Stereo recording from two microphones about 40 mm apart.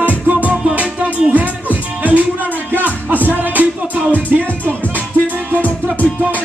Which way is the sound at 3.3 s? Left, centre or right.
Right.